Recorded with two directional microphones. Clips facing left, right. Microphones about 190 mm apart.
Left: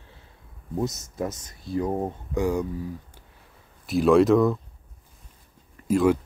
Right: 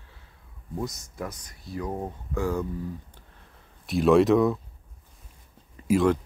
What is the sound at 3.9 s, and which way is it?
Speech, centre (ahead or behind).